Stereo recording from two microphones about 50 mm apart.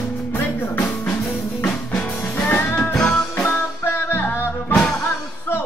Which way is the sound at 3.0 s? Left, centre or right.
Left.